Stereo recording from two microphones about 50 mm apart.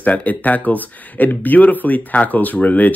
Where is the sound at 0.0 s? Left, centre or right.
Left.